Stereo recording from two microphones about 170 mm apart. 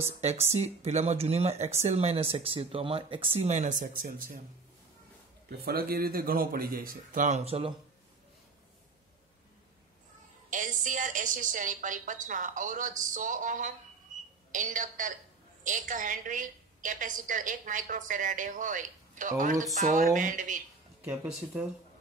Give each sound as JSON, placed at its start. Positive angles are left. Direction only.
{"t": 0.0, "sound": "speech", "side_deg": -40}
{"t": 5.5, "sound": "a man's voice", "side_deg": -65}
{"t": 10.5, "sound": "a woman's voice", "side_deg": -50}
{"t": 14.1, "sound": "a sound", "side_deg": -50}
{"t": 14.5, "sound": "a woman's voice", "side_deg": -50}
{"t": 21.0, "sound": "speech", "side_deg": -10}
{"t": 21.3, "sound": "speech", "side_deg": 0}